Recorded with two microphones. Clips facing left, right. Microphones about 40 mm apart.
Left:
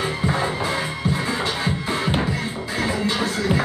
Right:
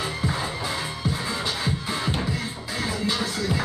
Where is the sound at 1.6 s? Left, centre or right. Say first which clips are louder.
Left 4 dB; left.